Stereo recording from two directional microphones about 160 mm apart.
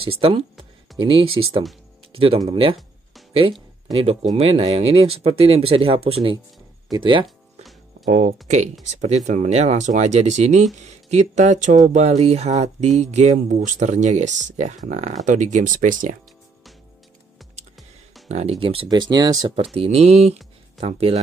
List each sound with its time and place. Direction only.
0.0 s speech: 35° right (ahead or behind)
3.9 s speech: 40° right (ahead or behind)
8.1 s speech: 50° right (ahead or behind)
18.3 s speech: 40° right (ahead or behind)
19.5 s speech: 35° right (ahead or behind)